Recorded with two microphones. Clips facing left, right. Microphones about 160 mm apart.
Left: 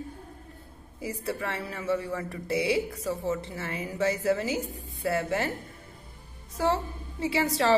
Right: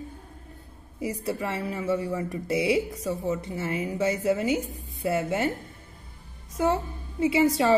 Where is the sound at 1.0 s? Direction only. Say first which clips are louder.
Right 3 dB; 25° right (ahead or behind).